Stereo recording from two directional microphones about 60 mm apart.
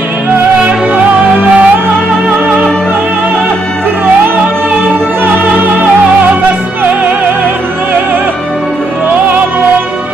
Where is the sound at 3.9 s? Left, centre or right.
Right.